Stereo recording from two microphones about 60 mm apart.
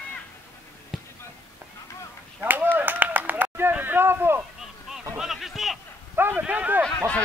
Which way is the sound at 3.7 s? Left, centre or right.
Right.